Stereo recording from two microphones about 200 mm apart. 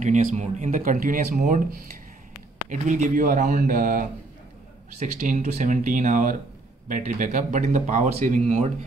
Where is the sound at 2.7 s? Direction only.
40° right (ahead or behind).